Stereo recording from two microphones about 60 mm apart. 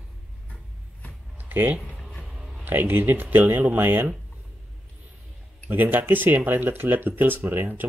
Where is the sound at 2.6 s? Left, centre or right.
Right.